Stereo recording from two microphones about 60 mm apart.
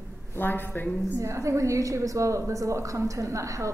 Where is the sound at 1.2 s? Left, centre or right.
Right.